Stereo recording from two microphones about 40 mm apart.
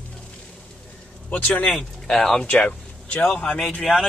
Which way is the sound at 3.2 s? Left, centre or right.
Left.